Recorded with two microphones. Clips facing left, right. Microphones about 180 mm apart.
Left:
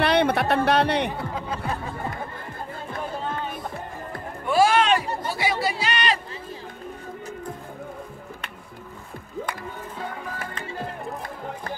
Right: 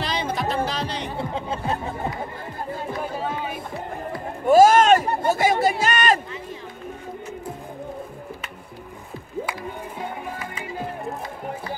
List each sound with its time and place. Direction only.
0.0 s music: 65° left (ahead or behind)
1.1 s speech: 25° right (ahead or behind)
3.0 s music: 10° right (ahead or behind)
4.5 s music: 45° right (ahead or behind)
9.9 s music: 20° right (ahead or behind)